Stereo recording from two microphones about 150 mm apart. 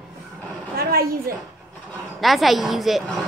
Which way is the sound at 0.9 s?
80° right.